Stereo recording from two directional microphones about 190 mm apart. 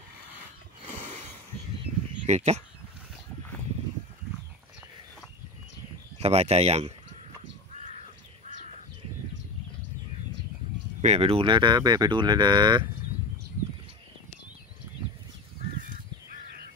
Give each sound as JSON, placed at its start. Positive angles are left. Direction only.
{"t": 2.2, "sound": "speech", "side_deg": -35}
{"t": 6.2, "sound": "speech", "side_deg": -35}
{"t": 11.0, "sound": "speech", "side_deg": -35}